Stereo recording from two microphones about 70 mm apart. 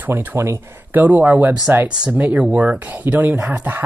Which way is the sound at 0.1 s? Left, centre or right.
Right.